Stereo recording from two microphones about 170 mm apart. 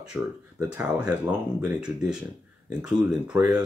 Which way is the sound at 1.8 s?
5° right (ahead or behind).